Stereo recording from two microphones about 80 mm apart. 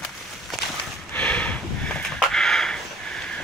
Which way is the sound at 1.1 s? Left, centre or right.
Centre.